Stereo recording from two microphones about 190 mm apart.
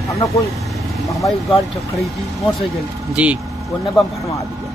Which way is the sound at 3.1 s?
5° right (ahead or behind).